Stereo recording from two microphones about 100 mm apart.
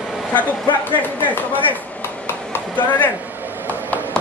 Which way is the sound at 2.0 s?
20° left (ahead or behind).